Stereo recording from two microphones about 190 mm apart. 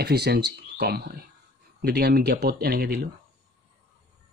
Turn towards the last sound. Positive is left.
turn(degrees=-55)  # may be behind; listen again after turning